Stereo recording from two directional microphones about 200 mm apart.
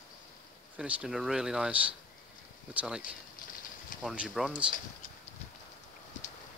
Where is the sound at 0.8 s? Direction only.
5° right (ahead or behind).